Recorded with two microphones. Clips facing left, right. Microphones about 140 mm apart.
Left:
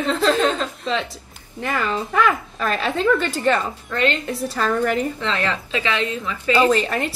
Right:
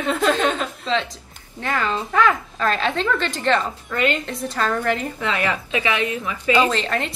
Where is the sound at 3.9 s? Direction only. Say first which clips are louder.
Even; 10° right (ahead or behind).